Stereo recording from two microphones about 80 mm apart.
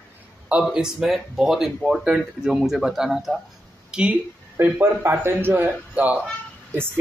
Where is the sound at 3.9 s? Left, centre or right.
Centre.